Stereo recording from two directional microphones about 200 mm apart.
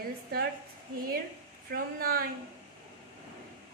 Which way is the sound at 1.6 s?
45° right (ahead or behind).